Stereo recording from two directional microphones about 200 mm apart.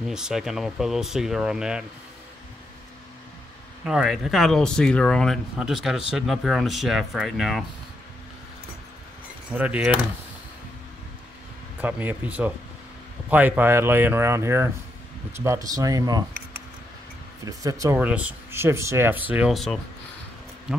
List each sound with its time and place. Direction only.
0.0 s speech: 5° right (ahead or behind)
3.8 s speech: 5° right (ahead or behind)
9.5 s speech: 5° right (ahead or behind)
11.8 s speech: 10° right (ahead or behind)
17.5 s speech: 15° right (ahead or behind); by 19.8 s centre (ahead or behind)